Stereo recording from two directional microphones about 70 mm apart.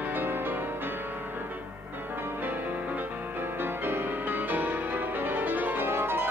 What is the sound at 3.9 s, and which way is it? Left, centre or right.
Music, right.